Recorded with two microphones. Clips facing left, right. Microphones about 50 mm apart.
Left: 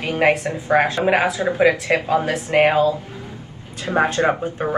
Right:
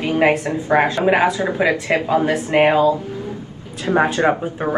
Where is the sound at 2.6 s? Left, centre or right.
Right.